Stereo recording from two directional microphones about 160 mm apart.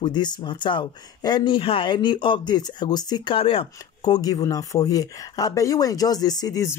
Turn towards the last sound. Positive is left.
turn(degrees=20)  # may be behind; listen again after turning